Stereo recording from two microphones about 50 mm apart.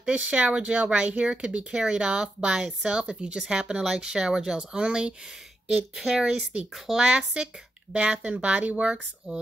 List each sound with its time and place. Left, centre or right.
0.0 s a woman's voice: right